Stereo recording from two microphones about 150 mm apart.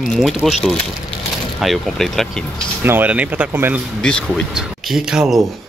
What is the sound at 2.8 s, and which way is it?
Speech, 10° right (ahead or behind).